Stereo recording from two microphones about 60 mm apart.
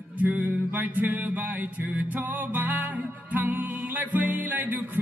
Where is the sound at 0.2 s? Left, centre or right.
Right.